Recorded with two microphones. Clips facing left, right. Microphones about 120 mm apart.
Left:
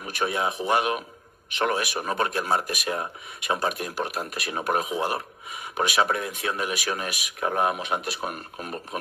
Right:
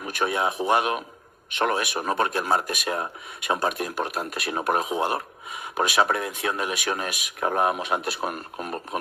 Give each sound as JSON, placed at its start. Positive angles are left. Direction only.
{"t": 0.2, "sound": "speech", "side_deg": -30}